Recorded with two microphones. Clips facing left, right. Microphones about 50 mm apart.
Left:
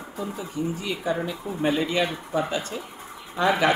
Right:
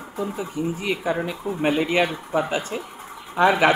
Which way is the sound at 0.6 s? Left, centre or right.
Right.